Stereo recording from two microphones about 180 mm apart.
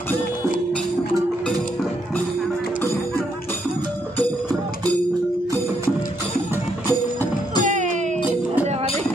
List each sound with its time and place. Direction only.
6.5 s music: 10° right (ahead or behind)
7.6 s music: 45° right (ahead or behind)